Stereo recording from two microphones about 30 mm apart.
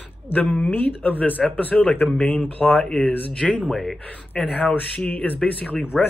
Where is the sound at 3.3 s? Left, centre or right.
Left.